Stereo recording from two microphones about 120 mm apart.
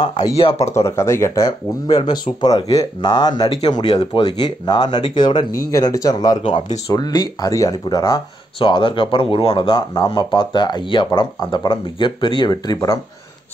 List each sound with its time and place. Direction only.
0.0 s speech: 35° left (ahead or behind)
0.4 s speech: 50° left (ahead or behind)
0.7 s speech: 25° left (ahead or behind)
2.0 s speech: 40° left (ahead or behind)
4.2 s speech: 35° left (ahead or behind)
5.5 s speech: 30° left (ahead or behind)
8.5 s speech: 45° left (ahead or behind); by 13.0 s 30° left (ahead or behind)